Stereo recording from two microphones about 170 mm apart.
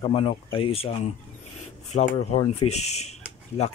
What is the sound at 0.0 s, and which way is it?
Speech, 35° left (ahead or behind).